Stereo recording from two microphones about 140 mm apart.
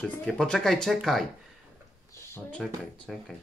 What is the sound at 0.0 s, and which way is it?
Speech, 5° left (ahead or behind).